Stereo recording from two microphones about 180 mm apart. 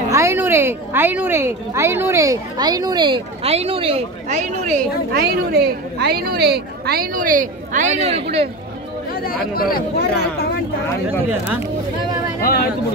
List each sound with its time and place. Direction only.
0.1 s speech: 15° right (ahead or behind); by 4.8 s 45° right (ahead or behind)
5.1 s speech: 60° right (ahead or behind); by 8.2 s 35° right (ahead or behind)
9.6 s speech: 55° left (ahead or behind)
11.2 s speech: 10° right (ahead or behind)
12.4 s speech: 55° left (ahead or behind)